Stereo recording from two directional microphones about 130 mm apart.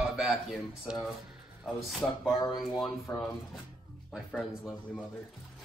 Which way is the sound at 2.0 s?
10° left (ahead or behind).